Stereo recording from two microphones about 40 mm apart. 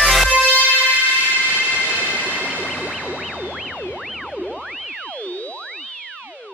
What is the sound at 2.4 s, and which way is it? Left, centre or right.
Music, right.